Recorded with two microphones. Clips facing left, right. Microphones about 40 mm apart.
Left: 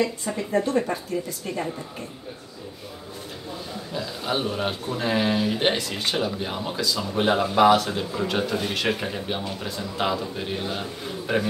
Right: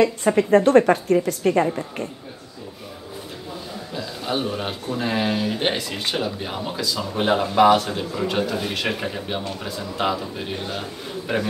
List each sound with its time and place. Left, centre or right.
0.0 s speech: right
3.9 s speech: centre